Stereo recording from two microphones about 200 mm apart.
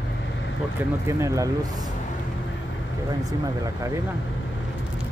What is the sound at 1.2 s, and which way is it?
Speech, 15° right (ahead or behind).